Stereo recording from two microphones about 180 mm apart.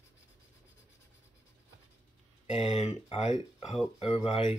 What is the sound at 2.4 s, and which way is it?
Speech, 40° left (ahead or behind).